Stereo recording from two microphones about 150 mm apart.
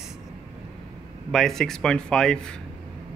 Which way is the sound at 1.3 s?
Centre (ahead or behind).